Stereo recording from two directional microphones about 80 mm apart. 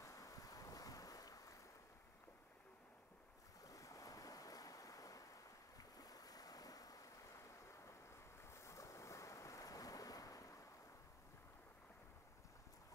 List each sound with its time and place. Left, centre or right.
0.0 s boat: left
3.6 s waves: left